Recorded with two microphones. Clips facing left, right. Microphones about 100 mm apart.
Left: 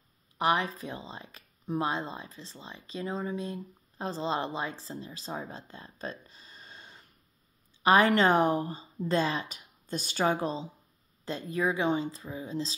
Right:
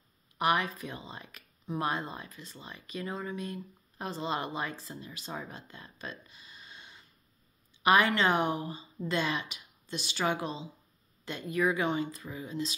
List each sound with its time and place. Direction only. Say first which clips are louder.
0.4 s a woman's voice: left 1 dB; 30° left (ahead or behind)